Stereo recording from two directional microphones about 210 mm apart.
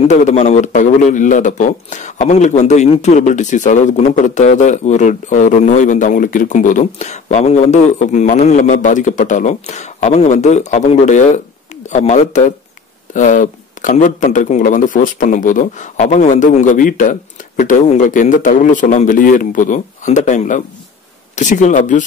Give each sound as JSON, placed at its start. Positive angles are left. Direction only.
{"t": 0.1, "sound": "a man's voice", "side_deg": 35}